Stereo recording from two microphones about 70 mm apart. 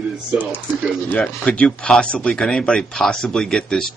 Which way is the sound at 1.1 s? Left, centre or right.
Centre.